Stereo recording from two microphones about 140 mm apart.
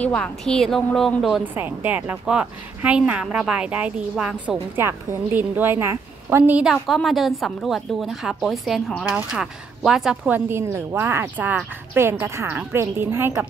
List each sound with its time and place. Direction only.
0.0 s a woman's voice: 5° left (ahead or behind)
1.4 s speech: 15° right (ahead or behind)
4.7 s speech: 15° right (ahead or behind)
6.7 s a woman's voice: centre (ahead or behind); by 13.5 s 15° right (ahead or behind)